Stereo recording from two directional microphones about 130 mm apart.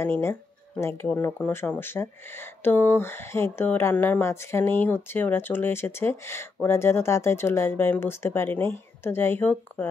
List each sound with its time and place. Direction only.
0.0 s speech: 20° left (ahead or behind)